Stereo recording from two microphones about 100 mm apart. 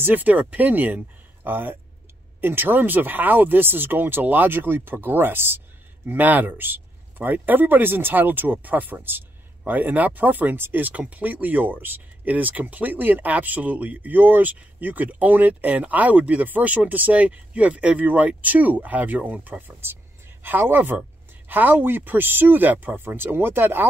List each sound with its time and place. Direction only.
0.0 s speech: 15° right (ahead or behind)